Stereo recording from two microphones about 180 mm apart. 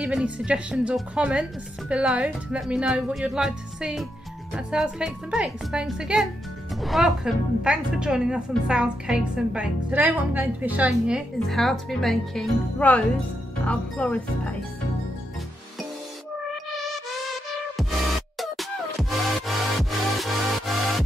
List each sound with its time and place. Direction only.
0.0 s a woman's voice: 5° right (ahead or behind)
13.7 s music: 5° left (ahead or behind)
17.7 s music: centre (ahead or behind)